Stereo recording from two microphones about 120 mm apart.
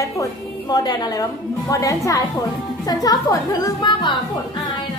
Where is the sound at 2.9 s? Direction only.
30° left (ahead or behind).